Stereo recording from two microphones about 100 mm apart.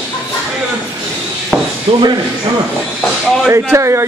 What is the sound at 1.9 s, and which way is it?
Speech, 55° right (ahead or behind).